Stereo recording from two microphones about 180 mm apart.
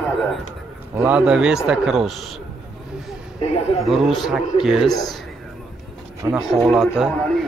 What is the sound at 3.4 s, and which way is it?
Speech, 35° left (ahead or behind).